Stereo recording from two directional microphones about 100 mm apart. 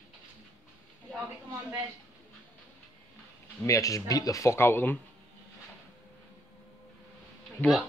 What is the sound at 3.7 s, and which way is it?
Speech, 35° left (ahead or behind).